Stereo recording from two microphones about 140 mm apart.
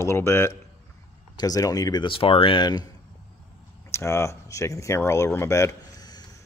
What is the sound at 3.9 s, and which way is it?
Speech, 20° left (ahead or behind).